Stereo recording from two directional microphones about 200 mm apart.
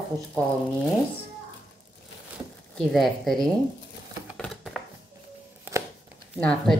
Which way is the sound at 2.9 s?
Centre (ahead or behind).